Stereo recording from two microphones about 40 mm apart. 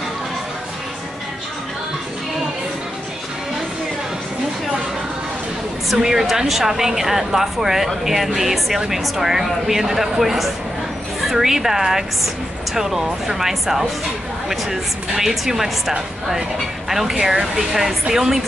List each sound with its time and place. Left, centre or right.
5.9 s speech: centre
16.9 s speech: centre